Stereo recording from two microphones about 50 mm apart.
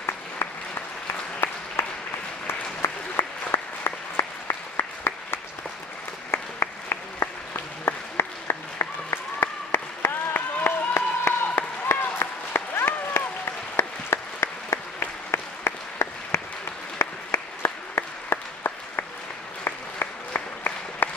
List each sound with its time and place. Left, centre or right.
0.4 s applause: left
1.8 s applause: left
14.4 s applause: left
17.0 s applause: left